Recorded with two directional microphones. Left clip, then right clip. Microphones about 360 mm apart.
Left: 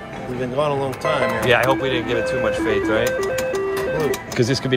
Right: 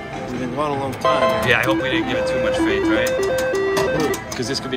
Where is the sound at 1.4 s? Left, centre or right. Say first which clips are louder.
Left 1 dB; centre.